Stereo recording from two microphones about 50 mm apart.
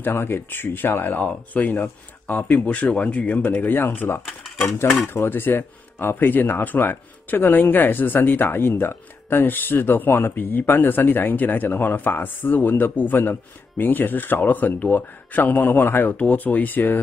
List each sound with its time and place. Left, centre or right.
0.0 s speech: left
1.2 s speech: left
4.6 s speech: left
4.9 s speech: left
16.2 s speech: left